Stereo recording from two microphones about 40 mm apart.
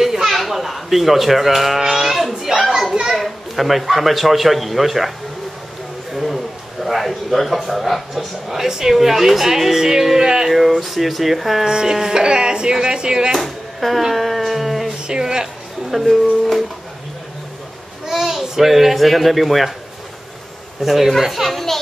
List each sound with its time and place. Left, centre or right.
0.0 s a sound: centre
2.2 s children playing: centre
3.2 s a man's voice: centre
6.1 s a man's voice: centre
8.6 s speech: centre
10.5 s speech: centre
11.6 s speech: centre
13.4 s a sound: centre
15.0 s speech: centre
15.9 s speech: centre
18.0 s a child's voice: centre
20.8 s speech: centre